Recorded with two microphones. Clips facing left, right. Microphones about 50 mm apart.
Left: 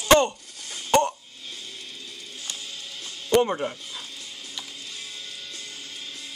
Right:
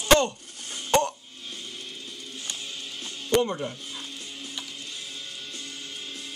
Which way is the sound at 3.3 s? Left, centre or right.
Left.